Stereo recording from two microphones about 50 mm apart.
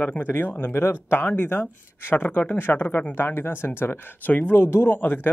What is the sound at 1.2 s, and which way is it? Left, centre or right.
Speech, left.